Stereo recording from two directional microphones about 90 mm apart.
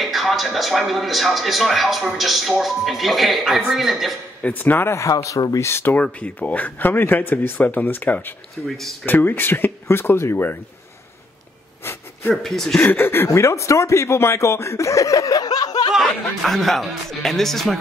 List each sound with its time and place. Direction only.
0.0 s speech: centre (ahead or behind)
4.4 s speech: 20° left (ahead or behind); by 5.7 s 40° left (ahead or behind)
5.7 s speech: 25° left (ahead or behind)
6.0 s speech: 15° left (ahead or behind)
8.6 s speech: centre (ahead or behind)
9.0 s speech: 25° left (ahead or behind)
11.8 s a sound: 25° left (ahead or behind)
12.4 s speech: 5° left (ahead or behind)
12.8 s speech: 25° left (ahead or behind); by 15.9 s 45° left (ahead or behind)
16.1 s speech: 5° left (ahead or behind)